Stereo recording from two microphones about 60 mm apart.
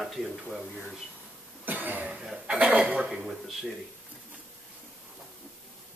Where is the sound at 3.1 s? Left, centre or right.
Centre.